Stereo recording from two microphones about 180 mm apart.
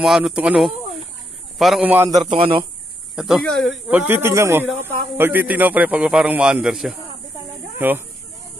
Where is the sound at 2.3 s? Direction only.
30° right (ahead or behind).